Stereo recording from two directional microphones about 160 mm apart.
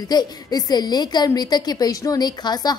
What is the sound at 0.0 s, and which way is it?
A woman's voice, 25° left (ahead or behind).